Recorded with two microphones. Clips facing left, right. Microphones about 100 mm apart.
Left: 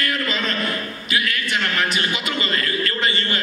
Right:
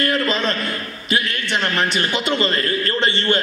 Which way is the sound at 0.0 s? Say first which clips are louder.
Right 5 dB; 30° right (ahead or behind).